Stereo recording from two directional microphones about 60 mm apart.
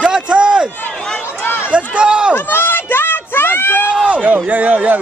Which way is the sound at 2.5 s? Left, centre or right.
Left.